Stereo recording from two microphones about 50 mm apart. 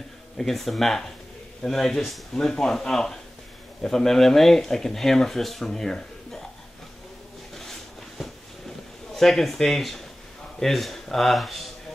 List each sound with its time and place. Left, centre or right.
0.4 s speech: centre
9.1 s speech: centre